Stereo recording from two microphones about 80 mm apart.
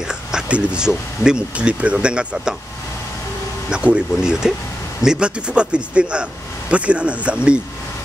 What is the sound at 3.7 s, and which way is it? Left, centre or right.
Speech, centre.